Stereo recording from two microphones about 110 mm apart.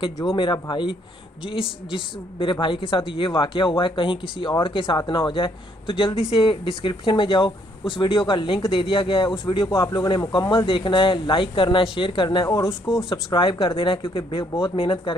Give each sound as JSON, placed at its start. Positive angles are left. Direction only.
{"t": 0.4, "sound": "speech", "side_deg": 45}
{"t": 9.7, "sound": "speech", "side_deg": 30}
{"t": 12.4, "sound": "speech", "side_deg": 25}
{"t": 13.1, "sound": "speech", "side_deg": 50}